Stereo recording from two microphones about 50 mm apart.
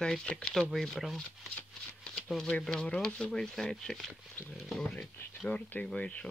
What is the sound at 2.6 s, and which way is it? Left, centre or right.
Speech, centre.